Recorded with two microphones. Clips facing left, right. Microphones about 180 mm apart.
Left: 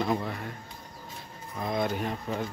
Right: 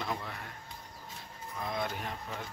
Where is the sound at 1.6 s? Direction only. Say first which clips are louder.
Left 7 dB; 20° left (ahead or behind).